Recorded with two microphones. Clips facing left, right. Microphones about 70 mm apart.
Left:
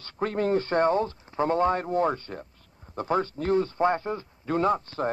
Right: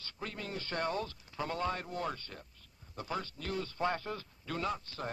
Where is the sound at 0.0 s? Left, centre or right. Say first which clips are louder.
Left 16 dB; left.